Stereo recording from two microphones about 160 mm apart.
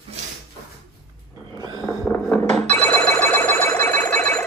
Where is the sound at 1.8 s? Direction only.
15° left (ahead or behind).